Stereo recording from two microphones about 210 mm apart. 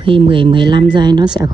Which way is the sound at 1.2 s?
5° right (ahead or behind).